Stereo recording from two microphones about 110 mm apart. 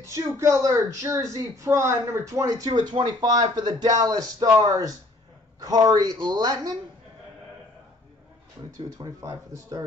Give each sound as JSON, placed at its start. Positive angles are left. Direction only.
{"t": 0.0, "sound": "speech", "side_deg": -25}
{"t": 8.9, "sound": "speech", "side_deg": -30}